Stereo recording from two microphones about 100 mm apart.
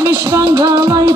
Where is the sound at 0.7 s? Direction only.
40° right (ahead or behind).